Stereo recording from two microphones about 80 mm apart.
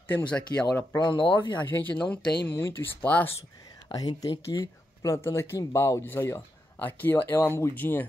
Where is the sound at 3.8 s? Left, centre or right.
Left.